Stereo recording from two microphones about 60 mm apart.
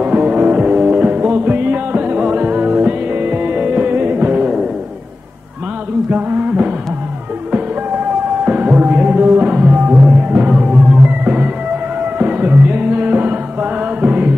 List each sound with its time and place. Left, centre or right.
0.0 s music: right
6.0 s music: right
8.5 s music: right